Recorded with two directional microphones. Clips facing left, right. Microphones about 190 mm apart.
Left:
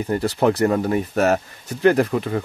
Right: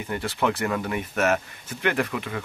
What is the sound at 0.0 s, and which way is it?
Speech, 35° left (ahead or behind).